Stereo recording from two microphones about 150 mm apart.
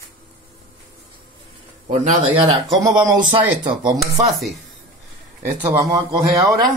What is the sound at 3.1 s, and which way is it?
Speech, 30° right (ahead or behind).